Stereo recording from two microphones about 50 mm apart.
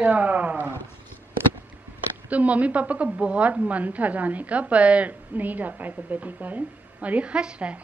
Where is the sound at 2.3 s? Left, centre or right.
Right.